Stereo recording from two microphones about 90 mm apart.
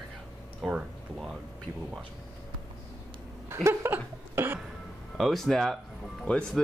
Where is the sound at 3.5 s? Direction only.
30° right (ahead or behind).